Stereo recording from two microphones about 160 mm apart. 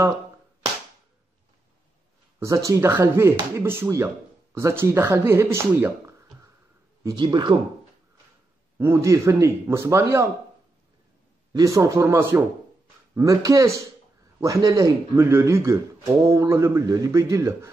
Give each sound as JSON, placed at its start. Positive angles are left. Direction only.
{"t": 2.4, "sound": "speech", "side_deg": -20}
{"t": 8.7, "sound": "speech", "side_deg": -15}
{"t": 11.5, "sound": "speech", "side_deg": -20}